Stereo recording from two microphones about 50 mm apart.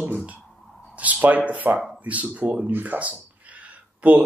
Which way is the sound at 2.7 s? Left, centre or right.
Right.